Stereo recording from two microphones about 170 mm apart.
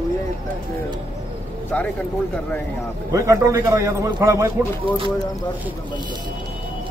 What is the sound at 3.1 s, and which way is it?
A man's voice, 20° right (ahead or behind).